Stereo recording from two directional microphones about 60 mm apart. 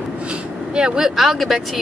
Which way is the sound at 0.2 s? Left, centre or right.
Centre.